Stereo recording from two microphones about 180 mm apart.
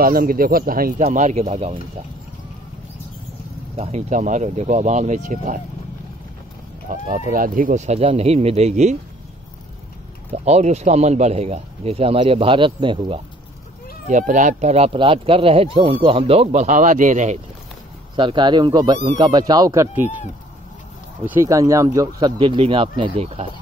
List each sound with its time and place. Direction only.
0.0 s speech: 55° right (ahead or behind)
1.0 s speech: 40° right (ahead or behind)
3.7 s speech: 35° right (ahead or behind)
6.9 s speech: 50° right (ahead or behind)
10.3 s speech: 35° right (ahead or behind)
14.0 s speech: 45° right (ahead or behind)
18.1 s speech: 25° right (ahead or behind)
21.3 s speech: 15° right (ahead or behind); by 23.5 s 35° right (ahead or behind)